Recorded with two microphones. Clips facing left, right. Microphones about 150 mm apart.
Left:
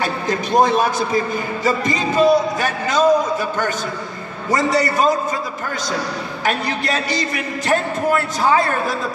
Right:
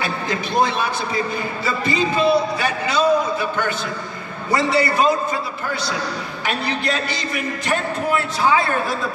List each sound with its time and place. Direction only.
0.0 s a man's voice: 40° left (ahead or behind)
6.4 s a woman's voice: 40° left (ahead or behind)